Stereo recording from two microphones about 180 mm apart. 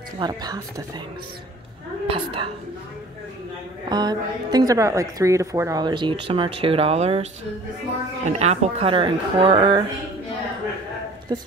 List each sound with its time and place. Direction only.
0.2 s a woman's voice: 20° right (ahead or behind)
2.0 s a woman's voice: 30° right (ahead or behind)
3.9 s a woman's voice: 20° right (ahead or behind)
8.3 s a woman's voice: 35° right (ahead or behind)
11.3 s a woman's voice: 25° right (ahead or behind)